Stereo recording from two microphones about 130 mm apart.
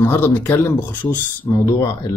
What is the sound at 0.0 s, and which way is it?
Speech, 15° left (ahead or behind).